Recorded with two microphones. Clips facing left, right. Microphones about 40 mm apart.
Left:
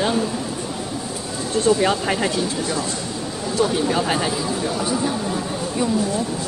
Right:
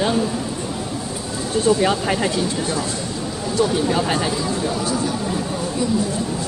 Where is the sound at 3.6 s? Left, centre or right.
Centre.